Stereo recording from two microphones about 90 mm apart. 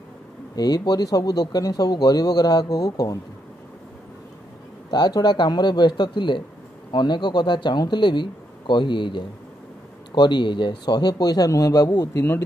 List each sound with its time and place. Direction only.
0.6 s speech: 50° left (ahead or behind)
4.9 s speech: 50° left (ahead or behind)